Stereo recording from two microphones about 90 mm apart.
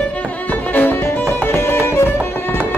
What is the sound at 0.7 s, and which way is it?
Music, 20° left (ahead or behind).